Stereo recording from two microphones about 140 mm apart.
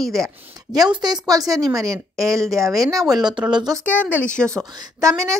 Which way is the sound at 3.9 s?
10° left (ahead or behind).